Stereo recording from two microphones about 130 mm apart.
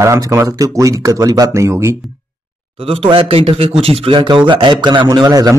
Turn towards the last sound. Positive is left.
turn(degrees=-30)  # may be behind; listen again after turning